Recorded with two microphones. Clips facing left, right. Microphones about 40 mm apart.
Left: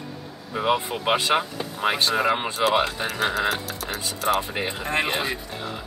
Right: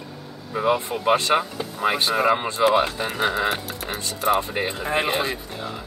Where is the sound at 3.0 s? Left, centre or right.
Centre.